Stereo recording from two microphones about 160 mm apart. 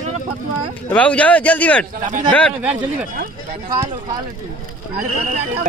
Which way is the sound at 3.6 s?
25° right (ahead or behind).